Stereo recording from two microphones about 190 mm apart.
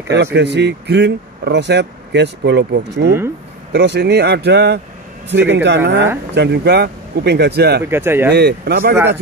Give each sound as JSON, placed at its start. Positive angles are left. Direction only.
{"t": 0.1, "sound": "speech", "side_deg": -65}
{"t": 7.9, "sound": "speech", "side_deg": -10}
{"t": 8.3, "sound": "speech", "side_deg": -60}